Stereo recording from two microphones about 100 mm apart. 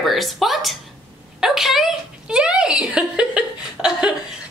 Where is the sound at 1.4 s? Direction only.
5° right (ahead or behind).